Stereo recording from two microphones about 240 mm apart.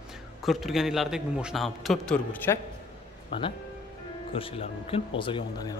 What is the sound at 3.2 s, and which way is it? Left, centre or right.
Speech, left.